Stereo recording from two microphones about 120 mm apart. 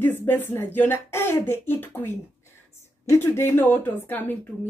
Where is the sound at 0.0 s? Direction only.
15° left (ahead or behind).